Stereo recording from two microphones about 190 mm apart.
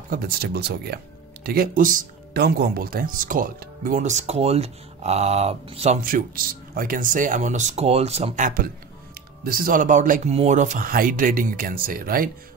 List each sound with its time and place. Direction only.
0.1 s speech: 55° right (ahead or behind); by 5.9 s 30° right (ahead or behind)
6.0 s speech: 50° right (ahead or behind)